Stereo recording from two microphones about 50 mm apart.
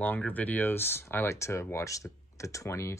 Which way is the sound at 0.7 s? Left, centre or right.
Left.